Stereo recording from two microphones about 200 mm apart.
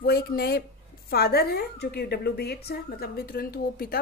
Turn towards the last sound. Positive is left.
turn(degrees=50)  # may be behind; listen again after turning